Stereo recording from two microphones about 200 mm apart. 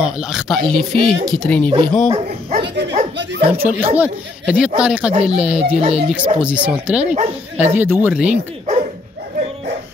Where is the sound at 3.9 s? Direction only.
5° right (ahead or behind).